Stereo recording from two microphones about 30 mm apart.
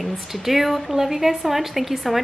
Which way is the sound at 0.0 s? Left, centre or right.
Centre.